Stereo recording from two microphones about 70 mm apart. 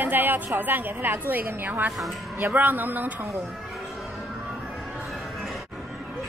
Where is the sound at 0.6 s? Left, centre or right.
Right.